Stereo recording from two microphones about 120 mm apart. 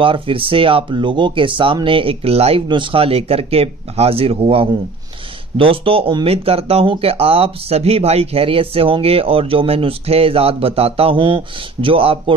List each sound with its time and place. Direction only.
0.0 s speech: 45° right (ahead or behind)
2.7 s speech: 45° right (ahead or behind)